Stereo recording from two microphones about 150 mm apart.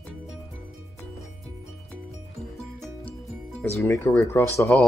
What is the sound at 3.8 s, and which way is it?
Speech, 20° left (ahead or behind).